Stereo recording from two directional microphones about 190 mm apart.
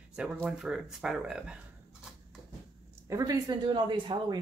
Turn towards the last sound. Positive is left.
turn(degrees=-25)  # may be behind; listen again after turning